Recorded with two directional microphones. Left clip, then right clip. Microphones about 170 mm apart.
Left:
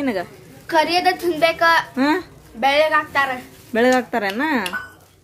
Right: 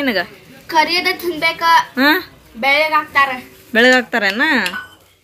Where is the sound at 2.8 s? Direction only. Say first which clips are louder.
Right 4 dB; 30° left (ahead or behind).